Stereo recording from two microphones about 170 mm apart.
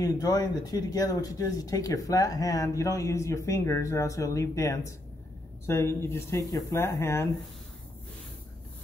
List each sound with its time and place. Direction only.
0.0 s speech: 20° left (ahead or behind)